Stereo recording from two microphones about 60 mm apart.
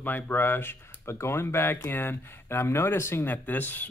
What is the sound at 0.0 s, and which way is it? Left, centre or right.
Speech, left.